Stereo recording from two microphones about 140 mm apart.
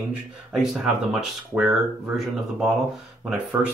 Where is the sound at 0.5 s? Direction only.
5° right (ahead or behind).